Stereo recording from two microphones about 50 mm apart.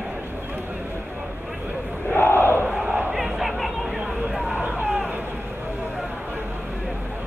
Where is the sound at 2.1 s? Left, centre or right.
Left.